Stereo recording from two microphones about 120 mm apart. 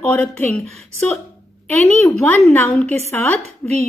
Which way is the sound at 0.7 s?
Centre (ahead or behind).